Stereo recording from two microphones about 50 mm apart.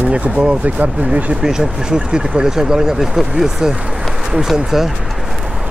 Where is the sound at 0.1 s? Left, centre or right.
Right.